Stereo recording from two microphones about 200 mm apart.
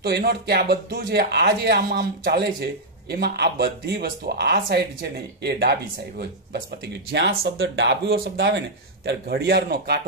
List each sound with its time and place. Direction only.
0.0 s speech: 55° right (ahead or behind)